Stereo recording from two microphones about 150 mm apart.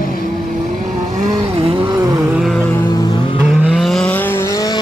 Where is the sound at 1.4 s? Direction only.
40° right (ahead or behind).